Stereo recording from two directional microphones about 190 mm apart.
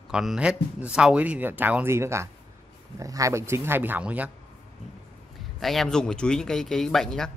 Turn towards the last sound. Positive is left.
turn(degrees=5)  # may be behind; listen again after turning